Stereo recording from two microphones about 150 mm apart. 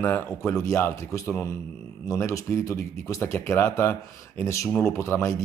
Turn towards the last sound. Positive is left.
turn(degrees=20)  # may be behind; listen again after turning